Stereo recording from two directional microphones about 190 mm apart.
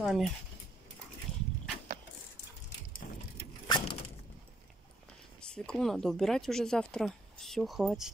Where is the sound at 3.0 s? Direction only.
45° left (ahead or behind).